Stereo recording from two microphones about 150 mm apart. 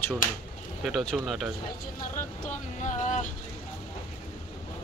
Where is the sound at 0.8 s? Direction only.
Centre (ahead or behind).